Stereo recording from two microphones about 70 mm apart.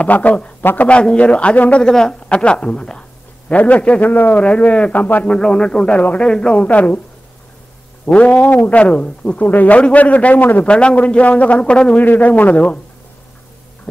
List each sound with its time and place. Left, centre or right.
0.0 s a man's voice: left
5.3 s a man's voice: centre
8.0 s speech: centre
10.7 s speech: centre
12.0 s speech: left